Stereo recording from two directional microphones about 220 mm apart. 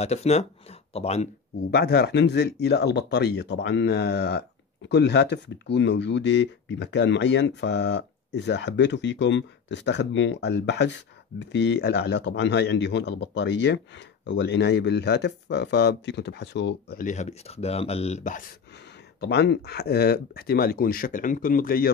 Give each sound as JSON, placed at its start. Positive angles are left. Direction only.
{"t": 0.0, "sound": "speech", "side_deg": 30}
{"t": 1.7, "sound": "speech", "side_deg": 50}
{"t": 17.0, "sound": "speech", "side_deg": 35}
{"t": 19.1, "sound": "speech", "side_deg": 50}